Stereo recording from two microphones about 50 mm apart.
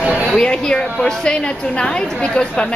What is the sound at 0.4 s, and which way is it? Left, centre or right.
A woman's voice, centre.